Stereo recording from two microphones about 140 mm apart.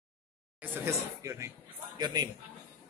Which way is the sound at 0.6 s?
20° right (ahead or behind).